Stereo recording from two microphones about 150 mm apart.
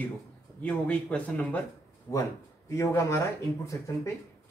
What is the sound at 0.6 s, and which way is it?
Speech, 10° left (ahead or behind).